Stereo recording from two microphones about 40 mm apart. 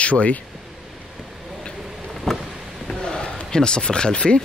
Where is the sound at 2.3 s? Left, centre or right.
Centre.